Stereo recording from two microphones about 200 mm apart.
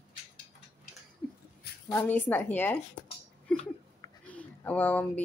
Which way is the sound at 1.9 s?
10° left (ahead or behind).